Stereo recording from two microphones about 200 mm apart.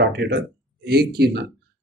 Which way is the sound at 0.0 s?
55° right (ahead or behind).